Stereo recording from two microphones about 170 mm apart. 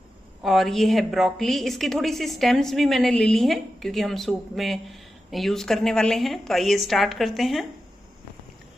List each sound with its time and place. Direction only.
0.4 s a woman's voice: centre (ahead or behind)